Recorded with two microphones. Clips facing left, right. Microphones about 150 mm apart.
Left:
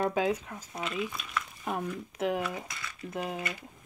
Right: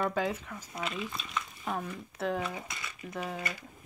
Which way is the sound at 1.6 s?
20° left (ahead or behind).